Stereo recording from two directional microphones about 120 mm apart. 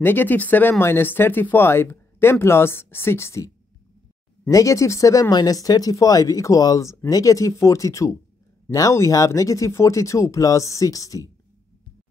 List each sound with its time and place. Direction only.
0.0 s speech: 15° left (ahead or behind)